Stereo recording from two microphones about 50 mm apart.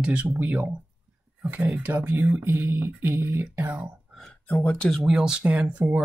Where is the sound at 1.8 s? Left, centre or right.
Right.